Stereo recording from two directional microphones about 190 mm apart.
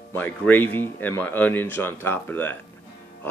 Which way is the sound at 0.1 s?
10° left (ahead or behind).